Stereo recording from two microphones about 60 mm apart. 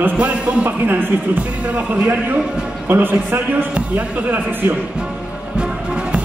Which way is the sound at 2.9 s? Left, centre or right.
Right.